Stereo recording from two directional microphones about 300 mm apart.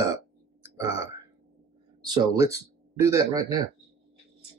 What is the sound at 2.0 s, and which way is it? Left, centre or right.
Speech, centre.